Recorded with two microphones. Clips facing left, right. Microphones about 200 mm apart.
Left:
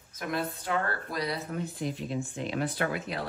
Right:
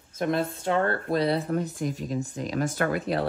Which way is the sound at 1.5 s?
45° right (ahead or behind).